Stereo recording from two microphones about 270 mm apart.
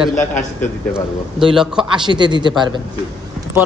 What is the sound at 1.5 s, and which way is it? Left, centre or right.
Speech, centre.